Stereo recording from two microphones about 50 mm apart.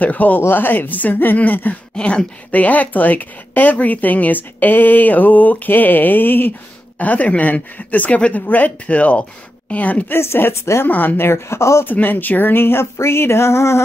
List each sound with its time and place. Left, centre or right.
0.0 s speech: left
0.4 s speech: left
2.0 s speech: centre
2.5 s speech: left
7.0 s speech: left
10.1 s speech: left
10.9 s speech: left
11.8 s speech: left
12.9 s speech: left